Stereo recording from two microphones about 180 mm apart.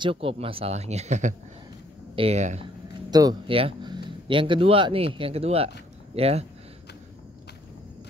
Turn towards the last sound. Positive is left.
turn(degrees=-35)  # may be behind; listen again after turning